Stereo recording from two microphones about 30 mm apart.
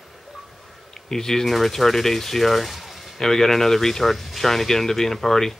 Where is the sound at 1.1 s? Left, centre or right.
Centre.